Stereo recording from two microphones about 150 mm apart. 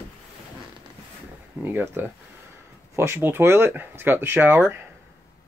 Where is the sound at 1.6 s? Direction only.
15° right (ahead or behind).